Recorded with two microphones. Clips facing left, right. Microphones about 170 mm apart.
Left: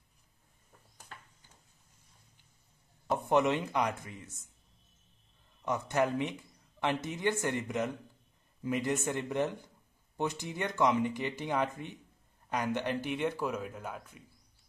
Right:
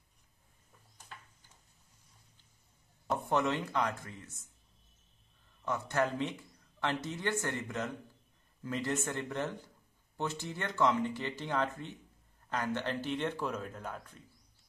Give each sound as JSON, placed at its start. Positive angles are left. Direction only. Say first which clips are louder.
{"t": 3.3, "sound": "speech", "louder": "left 4 dB", "side_deg": 15}
{"t": 5.6, "sound": "speech", "louder": "left 2 dB", "side_deg": 15}